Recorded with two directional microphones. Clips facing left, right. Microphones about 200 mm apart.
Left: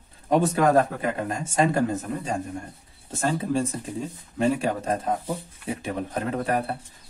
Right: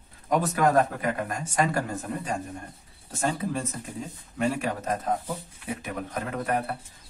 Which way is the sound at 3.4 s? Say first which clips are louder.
Left 5 dB; 30° left (ahead or behind).